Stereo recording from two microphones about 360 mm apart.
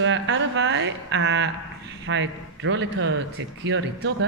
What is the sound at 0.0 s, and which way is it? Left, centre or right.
Speech, right.